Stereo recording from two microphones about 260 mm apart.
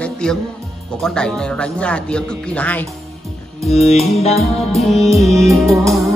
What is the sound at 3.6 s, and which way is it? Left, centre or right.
Music, left.